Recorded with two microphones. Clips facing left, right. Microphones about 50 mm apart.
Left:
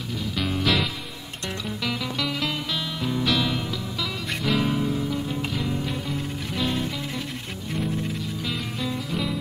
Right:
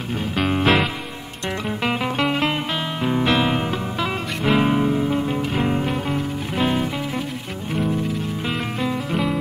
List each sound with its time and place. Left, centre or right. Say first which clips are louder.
0.5 s music: right 6 dB; right
1.9 s music: right 7 dB; right